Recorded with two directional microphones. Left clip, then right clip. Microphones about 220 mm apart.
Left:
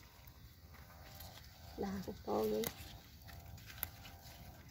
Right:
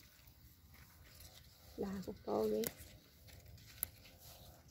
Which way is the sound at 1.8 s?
35° right (ahead or behind).